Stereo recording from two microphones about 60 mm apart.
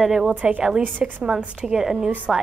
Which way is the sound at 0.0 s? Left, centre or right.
Centre.